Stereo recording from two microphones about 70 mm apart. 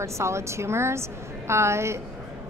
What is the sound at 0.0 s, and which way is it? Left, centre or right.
A woman's voice, right.